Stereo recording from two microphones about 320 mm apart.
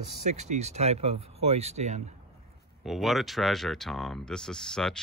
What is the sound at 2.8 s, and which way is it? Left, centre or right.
Speech, centre.